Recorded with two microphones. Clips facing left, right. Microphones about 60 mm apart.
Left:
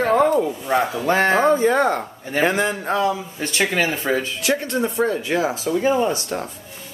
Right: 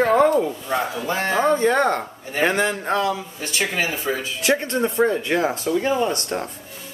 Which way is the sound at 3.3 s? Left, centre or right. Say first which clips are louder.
Left 3 dB; left.